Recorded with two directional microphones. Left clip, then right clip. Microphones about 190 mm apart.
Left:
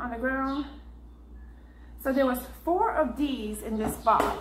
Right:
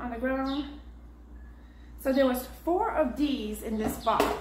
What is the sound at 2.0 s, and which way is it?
A woman's voice, centre (ahead or behind).